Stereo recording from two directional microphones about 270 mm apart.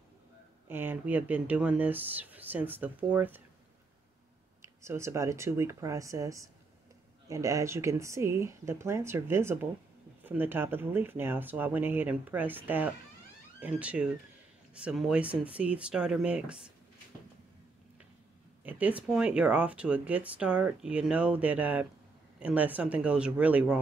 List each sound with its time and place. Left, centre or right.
0.7 s speech: centre
4.6 s speech: centre
18.6 s speech: centre